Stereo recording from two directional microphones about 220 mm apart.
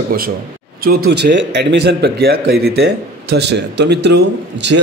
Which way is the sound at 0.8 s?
45° right (ahead or behind).